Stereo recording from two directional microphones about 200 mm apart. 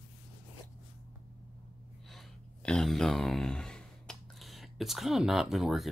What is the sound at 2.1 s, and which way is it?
Speech, centre (ahead or behind).